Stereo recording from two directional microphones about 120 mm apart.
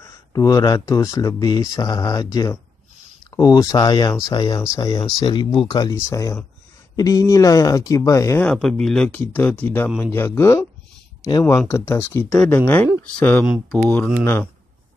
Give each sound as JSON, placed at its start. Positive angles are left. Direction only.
{"t": 0.0, "sound": "speech", "side_deg": 30}
{"t": 5.9, "sound": "speech", "side_deg": 25}
{"t": 8.5, "sound": "speech", "side_deg": 5}
{"t": 12.3, "sound": "speech", "side_deg": 10}